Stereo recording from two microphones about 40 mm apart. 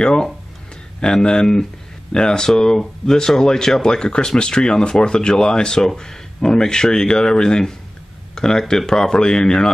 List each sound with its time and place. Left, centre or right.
0.0 s speech: centre